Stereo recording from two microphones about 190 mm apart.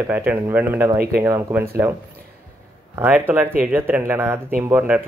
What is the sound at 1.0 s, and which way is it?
Speech, 55° right (ahead or behind).